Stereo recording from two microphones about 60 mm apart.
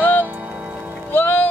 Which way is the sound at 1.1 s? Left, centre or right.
Left.